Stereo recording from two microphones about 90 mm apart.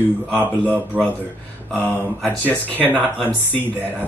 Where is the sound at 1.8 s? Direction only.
20° left (ahead or behind).